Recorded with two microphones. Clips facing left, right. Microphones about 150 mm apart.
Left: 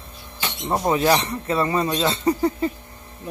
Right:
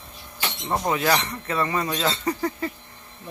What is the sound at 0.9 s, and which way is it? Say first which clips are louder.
Speech: left 4 dB; 25° left (ahead or behind).